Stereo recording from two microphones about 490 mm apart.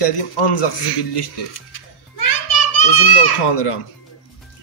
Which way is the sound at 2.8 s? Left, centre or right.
Left.